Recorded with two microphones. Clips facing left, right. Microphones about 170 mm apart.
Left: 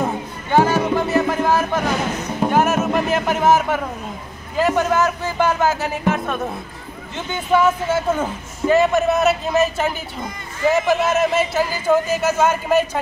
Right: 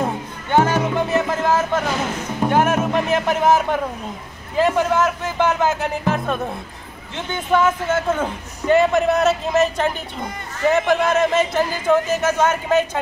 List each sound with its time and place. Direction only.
0.0 s music: 10° left (ahead or behind)
2.5 s a sound: 5° left (ahead or behind)
4.6 s a man's voice: 5° left (ahead or behind)